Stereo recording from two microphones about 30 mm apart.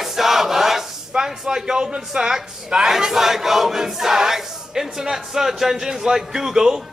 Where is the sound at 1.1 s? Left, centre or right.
Right.